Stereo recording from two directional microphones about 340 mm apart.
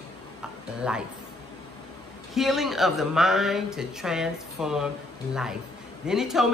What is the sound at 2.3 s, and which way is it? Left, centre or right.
Speech, centre.